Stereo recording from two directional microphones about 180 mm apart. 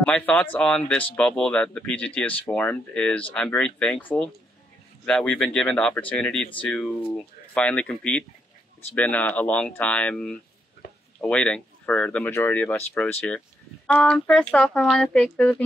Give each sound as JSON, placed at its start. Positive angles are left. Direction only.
{"t": 0.0, "sound": "speech", "side_deg": 5}
{"t": 10.8, "sound": "a sound", "side_deg": 65}
{"t": 11.1, "sound": "speech", "side_deg": 5}